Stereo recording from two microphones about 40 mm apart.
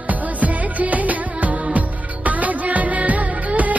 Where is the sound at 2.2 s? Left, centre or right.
Right.